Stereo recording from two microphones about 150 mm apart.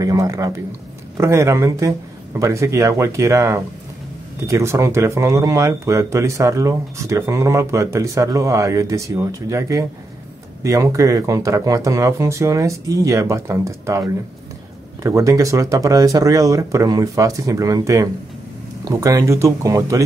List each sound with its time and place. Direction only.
0.0 s speech: 20° right (ahead or behind)